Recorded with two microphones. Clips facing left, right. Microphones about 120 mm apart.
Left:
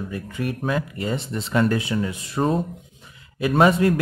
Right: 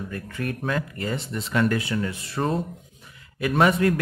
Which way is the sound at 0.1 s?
15° left (ahead or behind).